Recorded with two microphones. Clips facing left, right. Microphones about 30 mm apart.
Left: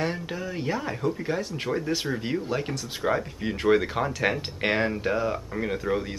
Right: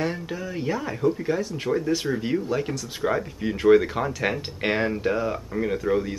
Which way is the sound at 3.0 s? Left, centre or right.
Centre.